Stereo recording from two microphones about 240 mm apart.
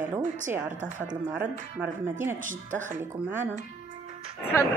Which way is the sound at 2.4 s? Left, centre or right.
Right.